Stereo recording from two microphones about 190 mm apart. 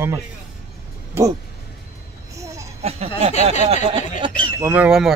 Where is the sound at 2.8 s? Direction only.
35° right (ahead or behind).